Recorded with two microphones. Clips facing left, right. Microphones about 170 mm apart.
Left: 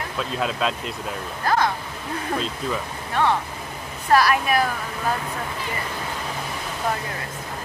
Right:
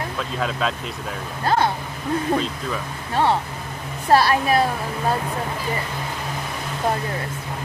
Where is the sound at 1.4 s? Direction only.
25° right (ahead or behind).